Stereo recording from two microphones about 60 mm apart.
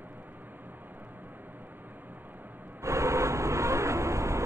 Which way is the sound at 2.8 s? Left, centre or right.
Right.